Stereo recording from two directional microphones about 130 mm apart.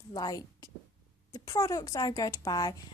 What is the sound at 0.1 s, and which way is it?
A woman's voice, 30° left (ahead or behind).